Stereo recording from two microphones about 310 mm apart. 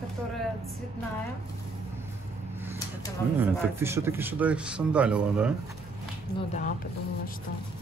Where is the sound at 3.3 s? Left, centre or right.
Centre.